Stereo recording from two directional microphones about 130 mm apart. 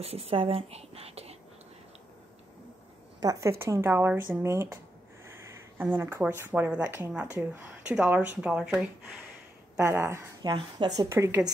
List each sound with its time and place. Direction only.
0.0 s speech: 50° right (ahead or behind)
3.2 s speech: 25° right (ahead or behind)
5.8 s speech: 15° right (ahead or behind)
9.8 s speech: 20° right (ahead or behind)
10.4 s speech: 35° right (ahead or behind)
11.1 s speech: 20° right (ahead or behind)